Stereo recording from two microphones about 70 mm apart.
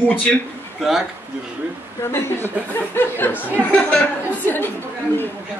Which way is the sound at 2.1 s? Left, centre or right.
Left.